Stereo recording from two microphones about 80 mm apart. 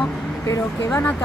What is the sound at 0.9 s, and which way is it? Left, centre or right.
Speech, centre.